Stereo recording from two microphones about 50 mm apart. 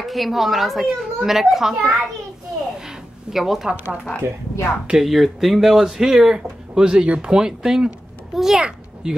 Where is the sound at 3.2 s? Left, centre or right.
Centre.